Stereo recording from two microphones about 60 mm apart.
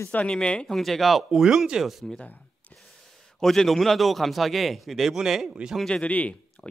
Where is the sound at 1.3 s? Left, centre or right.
Centre.